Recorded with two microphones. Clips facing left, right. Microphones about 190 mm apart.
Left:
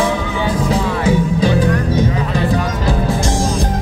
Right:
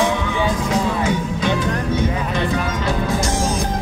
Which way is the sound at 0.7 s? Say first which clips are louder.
Left 3 dB; 35° left (ahead or behind).